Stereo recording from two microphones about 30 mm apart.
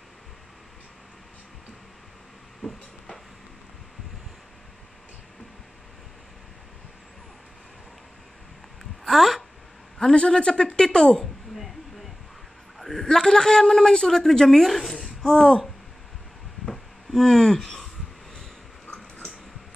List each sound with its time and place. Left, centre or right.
2.6 s vehicle: left
9.0 s speech: centre
9.9 s a man's voice: left
11.5 s a sound: centre
13.0 s a man's voice: left
14.6 s a woman's voice: centre
15.2 s a man's voice: left
16.7 s a sound: centre